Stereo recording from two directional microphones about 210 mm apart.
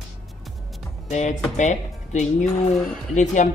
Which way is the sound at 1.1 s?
35° left (ahead or behind).